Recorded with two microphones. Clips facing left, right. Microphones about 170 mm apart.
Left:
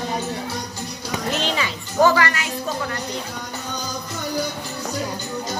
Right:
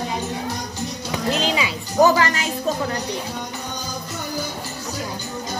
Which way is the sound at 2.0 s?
25° right (ahead or behind).